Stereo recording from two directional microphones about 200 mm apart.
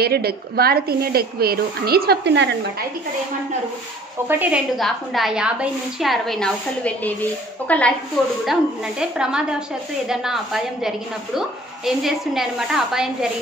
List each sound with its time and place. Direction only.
0.0 s a woman's voice: 50° right (ahead or behind)
4.3 s a woman's voice: 5° right (ahead or behind)
9.0 s a woman's voice: 5° right (ahead or behind)